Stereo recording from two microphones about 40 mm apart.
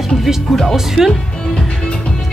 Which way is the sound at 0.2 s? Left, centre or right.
Centre.